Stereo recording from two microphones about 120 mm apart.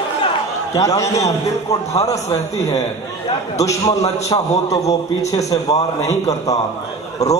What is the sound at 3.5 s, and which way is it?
Speech, 25° left (ahead or behind).